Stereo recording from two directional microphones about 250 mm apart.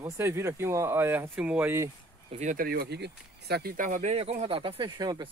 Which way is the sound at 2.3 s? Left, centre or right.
Right.